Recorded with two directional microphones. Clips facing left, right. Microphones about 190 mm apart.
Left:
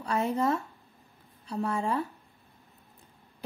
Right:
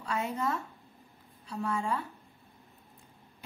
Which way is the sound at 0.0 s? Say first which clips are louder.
Left 5 dB; 35° left (ahead or behind).